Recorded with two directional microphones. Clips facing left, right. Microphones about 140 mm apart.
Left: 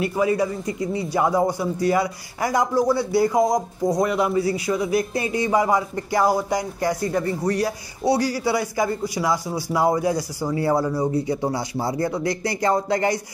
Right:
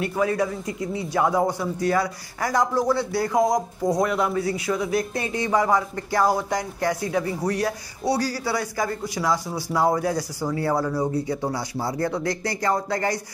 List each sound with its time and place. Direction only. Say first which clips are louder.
0.0 s a man's voice: left 2 dB; 5° left (ahead or behind)
8.1 s a man's voice: left 3 dB; 15° left (ahead or behind)